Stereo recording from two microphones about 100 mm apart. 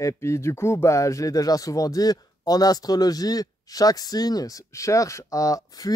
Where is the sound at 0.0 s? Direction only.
30° left (ahead or behind).